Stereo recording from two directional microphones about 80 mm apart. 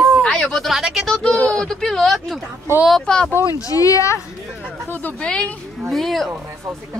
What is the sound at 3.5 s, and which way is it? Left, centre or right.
Speech, left.